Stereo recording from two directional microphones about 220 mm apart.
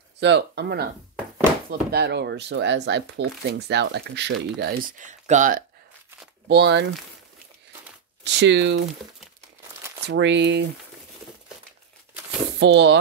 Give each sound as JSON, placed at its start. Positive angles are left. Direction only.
{"t": 0.2, "sound": "speech", "side_deg": -50}
{"t": 6.4, "sound": "speech", "side_deg": -50}
{"t": 8.2, "sound": "speech", "side_deg": -50}
{"t": 10.0, "sound": "speech", "side_deg": -55}
{"t": 12.5, "sound": "speech", "side_deg": -55}